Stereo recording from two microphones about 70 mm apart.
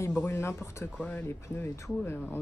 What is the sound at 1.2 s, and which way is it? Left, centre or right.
Speech, left.